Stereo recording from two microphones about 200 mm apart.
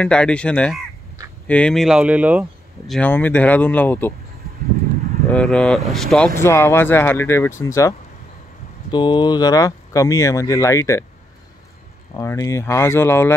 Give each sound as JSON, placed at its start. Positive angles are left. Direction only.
{"t": 0.0, "sound": "speech", "side_deg": 5}
{"t": 2.9, "sound": "speech", "side_deg": 10}
{"t": 5.3, "sound": "speech", "side_deg": 5}
{"t": 6.4, "sound": "speech", "side_deg": 15}
{"t": 8.9, "sound": "speech", "side_deg": 25}
{"t": 12.2, "sound": "speech", "side_deg": 15}